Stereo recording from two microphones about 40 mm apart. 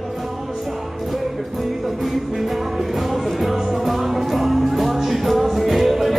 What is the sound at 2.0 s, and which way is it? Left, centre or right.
Music, centre.